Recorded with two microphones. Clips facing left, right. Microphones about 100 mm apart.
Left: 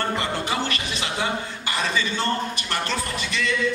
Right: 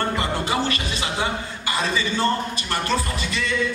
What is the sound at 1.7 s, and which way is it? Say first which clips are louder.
A man's voice: right 2 dB; 20° right (ahead or behind).